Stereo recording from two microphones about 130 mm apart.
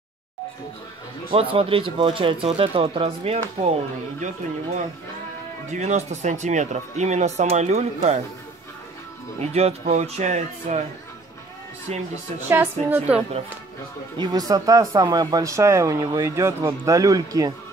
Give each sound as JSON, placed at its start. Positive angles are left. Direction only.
{"t": 1.3, "sound": "speech", "side_deg": -45}
{"t": 5.7, "sound": "speech", "side_deg": -60}
{"t": 9.4, "sound": "speech", "side_deg": -55}
{"t": 12.4, "sound": "a woman's voice", "side_deg": -15}
{"t": 14.1, "sound": "speech", "side_deg": -30}